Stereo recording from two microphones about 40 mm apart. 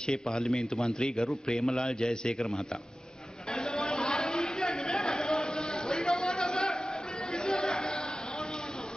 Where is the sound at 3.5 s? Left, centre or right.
Centre.